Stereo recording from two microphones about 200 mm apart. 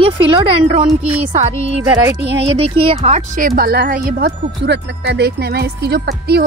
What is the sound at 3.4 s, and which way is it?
Speech, 45° right (ahead or behind).